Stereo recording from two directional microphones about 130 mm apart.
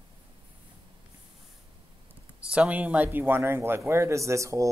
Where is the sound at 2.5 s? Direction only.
10° right (ahead or behind).